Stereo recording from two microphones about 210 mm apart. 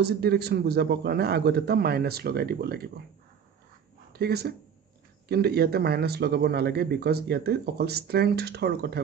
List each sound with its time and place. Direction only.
0.0 s speech: 50° right (ahead or behind)
4.1 s speech: 50° right (ahead or behind)